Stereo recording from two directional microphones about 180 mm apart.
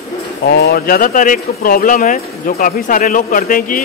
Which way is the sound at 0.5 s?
60° left (ahead or behind).